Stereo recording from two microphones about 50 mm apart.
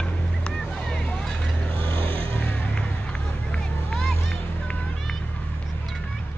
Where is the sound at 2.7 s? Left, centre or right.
Left.